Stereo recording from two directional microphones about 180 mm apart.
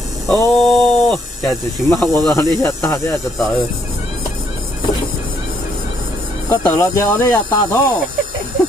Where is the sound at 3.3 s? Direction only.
Centre (ahead or behind).